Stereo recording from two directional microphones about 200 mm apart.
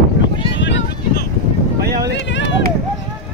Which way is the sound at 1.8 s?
50° right (ahead or behind).